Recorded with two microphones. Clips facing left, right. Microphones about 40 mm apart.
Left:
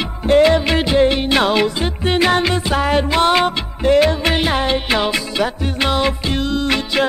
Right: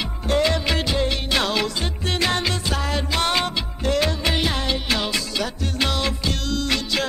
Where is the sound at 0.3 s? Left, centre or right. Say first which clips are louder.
Left 9 dB; left.